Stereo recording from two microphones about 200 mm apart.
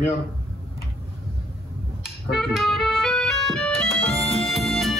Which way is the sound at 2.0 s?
Centre (ahead or behind).